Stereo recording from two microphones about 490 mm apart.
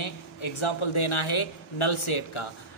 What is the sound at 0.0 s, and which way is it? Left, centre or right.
A man's voice, left.